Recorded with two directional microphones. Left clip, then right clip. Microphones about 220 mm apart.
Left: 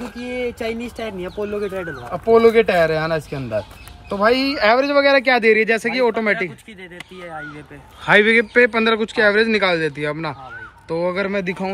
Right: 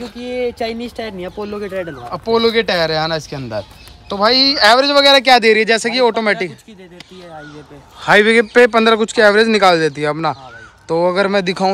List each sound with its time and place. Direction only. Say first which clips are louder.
0.2 s speech: right 5 dB; 45° right (ahead or behind)
2.0 s speech: left 2 dB; centre (ahead or behind)
8.0 s speech: right 3 dB; 5° right (ahead or behind)